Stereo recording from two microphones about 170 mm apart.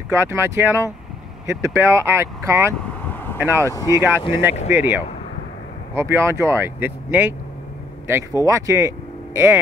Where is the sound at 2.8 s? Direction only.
10° left (ahead or behind).